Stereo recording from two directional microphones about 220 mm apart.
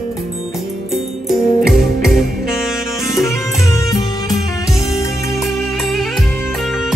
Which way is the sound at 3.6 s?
15° left (ahead or behind).